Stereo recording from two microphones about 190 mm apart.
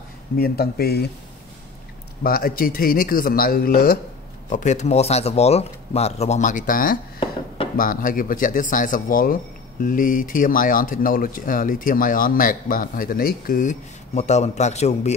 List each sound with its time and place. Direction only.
0.4 s speech: 55° left (ahead or behind)
2.2 s speech: 50° left (ahead or behind)
4.5 s speech: 40° left (ahead or behind)